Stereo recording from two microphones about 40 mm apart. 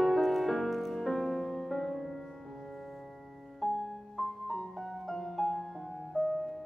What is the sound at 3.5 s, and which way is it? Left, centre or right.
Music, centre.